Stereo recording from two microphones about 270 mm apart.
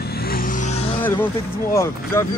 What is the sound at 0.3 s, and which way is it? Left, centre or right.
Vehicle, left.